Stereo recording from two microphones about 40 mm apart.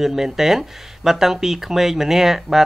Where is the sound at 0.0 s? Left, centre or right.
Centre.